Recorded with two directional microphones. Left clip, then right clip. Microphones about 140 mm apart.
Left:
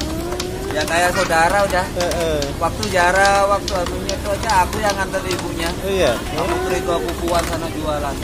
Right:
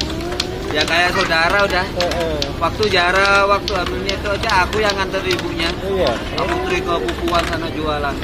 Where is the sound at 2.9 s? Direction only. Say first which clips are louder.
Left 1 dB; 20° left (ahead or behind).